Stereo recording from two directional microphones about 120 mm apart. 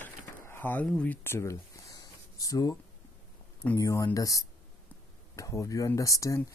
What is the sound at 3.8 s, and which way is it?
Speech, 30° left (ahead or behind).